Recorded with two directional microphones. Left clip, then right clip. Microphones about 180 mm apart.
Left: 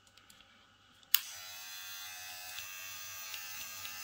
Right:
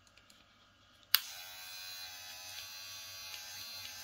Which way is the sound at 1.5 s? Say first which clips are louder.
Left 1 dB; 5° left (ahead or behind).